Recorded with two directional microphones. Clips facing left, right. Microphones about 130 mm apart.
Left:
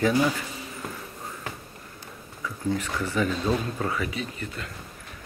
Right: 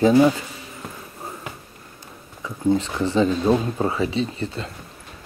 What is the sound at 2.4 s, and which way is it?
Speech, 25° right (ahead or behind).